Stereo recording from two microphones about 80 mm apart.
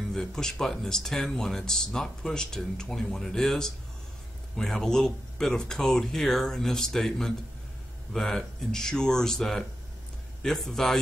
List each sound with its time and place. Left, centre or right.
0.1 s a man's voice: centre